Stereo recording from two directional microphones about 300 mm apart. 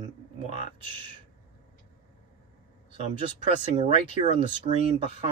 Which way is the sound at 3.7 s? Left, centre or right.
Centre.